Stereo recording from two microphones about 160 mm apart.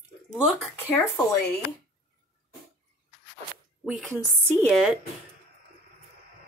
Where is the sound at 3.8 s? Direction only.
5° right (ahead or behind).